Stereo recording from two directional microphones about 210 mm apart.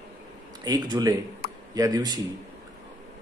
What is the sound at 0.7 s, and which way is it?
Speech, 20° right (ahead or behind).